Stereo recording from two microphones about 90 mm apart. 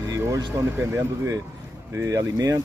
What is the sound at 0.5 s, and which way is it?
Speech, 40° right (ahead or behind).